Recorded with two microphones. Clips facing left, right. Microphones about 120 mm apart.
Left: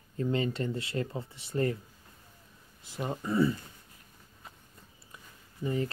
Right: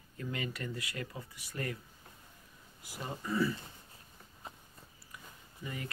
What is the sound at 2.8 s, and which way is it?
Speech, 25° left (ahead or behind).